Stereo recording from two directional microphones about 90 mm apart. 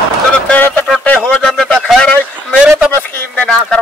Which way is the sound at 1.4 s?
5° left (ahead or behind).